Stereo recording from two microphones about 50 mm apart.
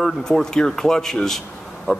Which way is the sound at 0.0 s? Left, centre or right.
Centre.